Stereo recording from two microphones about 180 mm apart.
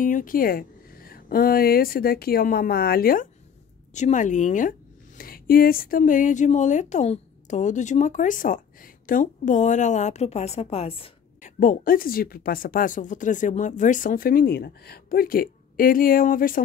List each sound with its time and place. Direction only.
0.0 s speech: 50° left (ahead or behind)
3.9 s a woman's voice: 40° left (ahead or behind)
11.6 s speech: 50° left (ahead or behind)